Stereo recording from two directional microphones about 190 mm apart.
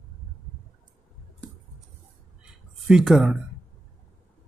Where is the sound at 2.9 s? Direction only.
Centre (ahead or behind).